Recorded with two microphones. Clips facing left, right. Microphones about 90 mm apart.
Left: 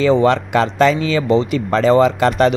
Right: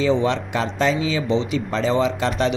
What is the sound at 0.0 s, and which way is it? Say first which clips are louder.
Speech: left 6 dB; 60° left (ahead or behind).